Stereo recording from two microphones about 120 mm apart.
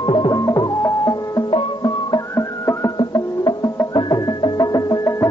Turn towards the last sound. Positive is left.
turn(degrees=30)  # may be behind; listen again after turning